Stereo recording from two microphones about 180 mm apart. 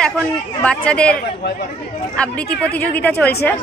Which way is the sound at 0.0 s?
5° left (ahead or behind).